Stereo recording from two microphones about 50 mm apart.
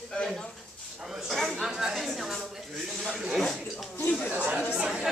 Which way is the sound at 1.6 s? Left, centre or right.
Centre.